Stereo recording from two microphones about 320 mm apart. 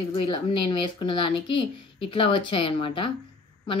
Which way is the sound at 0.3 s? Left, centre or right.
Centre.